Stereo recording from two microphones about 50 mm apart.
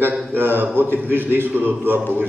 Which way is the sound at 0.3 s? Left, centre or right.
Right.